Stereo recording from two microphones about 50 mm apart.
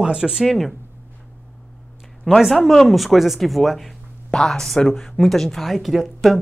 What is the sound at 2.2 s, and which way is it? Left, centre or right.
Speech, centre.